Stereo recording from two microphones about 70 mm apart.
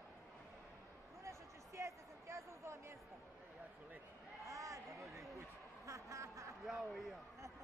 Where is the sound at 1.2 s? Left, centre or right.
Right.